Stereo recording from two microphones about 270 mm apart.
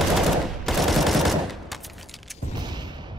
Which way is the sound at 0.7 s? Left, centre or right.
Centre.